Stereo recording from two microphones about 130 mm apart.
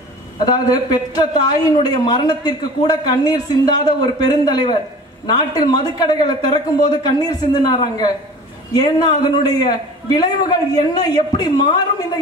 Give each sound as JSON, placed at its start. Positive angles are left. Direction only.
{"t": 0.5, "sound": "speech", "side_deg": 30}